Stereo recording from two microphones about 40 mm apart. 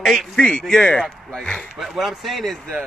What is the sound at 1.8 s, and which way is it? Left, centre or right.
Speech, centre.